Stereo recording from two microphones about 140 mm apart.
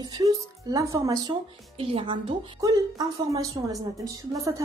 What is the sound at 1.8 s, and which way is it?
Speech, 40° right (ahead or behind).